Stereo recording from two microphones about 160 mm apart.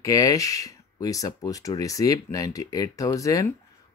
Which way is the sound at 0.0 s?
20° left (ahead or behind).